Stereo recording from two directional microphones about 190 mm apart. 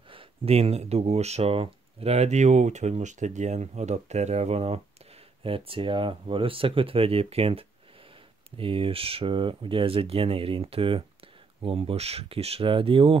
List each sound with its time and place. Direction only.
0.1 s speech: 30° right (ahead or behind)